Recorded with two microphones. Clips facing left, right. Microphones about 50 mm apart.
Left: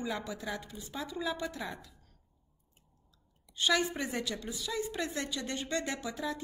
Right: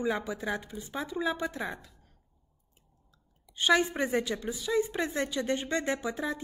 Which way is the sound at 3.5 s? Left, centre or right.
Right.